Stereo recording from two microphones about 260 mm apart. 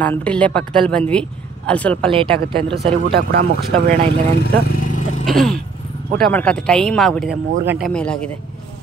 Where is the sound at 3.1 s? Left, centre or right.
Right.